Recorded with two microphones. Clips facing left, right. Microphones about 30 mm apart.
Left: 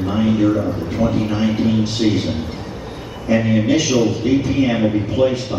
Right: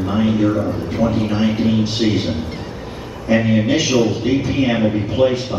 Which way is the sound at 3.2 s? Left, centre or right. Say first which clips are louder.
Even; centre.